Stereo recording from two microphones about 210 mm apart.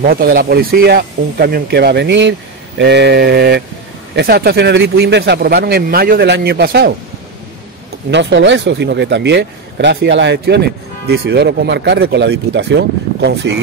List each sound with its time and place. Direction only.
0.0 s a man's voice: 45° right (ahead or behind)
8.1 s a man's voice: 55° right (ahead or behind)